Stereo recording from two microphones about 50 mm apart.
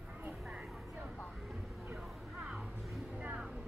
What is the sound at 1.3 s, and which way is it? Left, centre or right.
Music, centre.